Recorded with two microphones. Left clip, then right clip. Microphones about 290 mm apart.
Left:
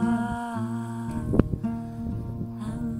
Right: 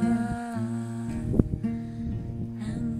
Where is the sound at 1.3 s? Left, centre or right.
Left.